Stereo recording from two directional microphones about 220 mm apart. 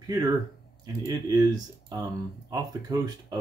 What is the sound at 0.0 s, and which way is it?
Speech, 20° right (ahead or behind).